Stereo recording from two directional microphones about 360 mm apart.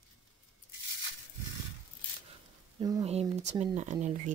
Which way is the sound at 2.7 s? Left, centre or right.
Centre.